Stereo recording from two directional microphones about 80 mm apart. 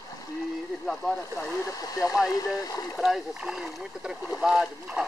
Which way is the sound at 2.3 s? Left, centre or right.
Left.